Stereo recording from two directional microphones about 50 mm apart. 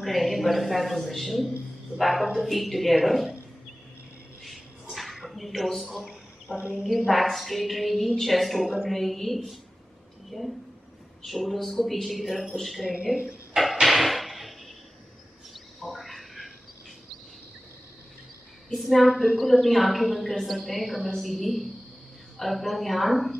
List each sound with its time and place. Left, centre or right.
0.0 s a woman's voice: centre
4.4 s a sound: centre
6.4 s speech: right
6.9 s a woman's voice: centre
13.6 s drawer open or close: centre
15.5 s a sound: centre
18.7 s a woman's voice: centre